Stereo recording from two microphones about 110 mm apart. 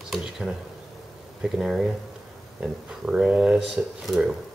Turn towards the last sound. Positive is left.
turn(degrees=0)  # may be behind; listen again after turning